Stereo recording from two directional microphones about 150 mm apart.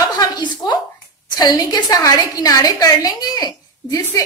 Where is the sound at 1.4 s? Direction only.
25° left (ahead or behind).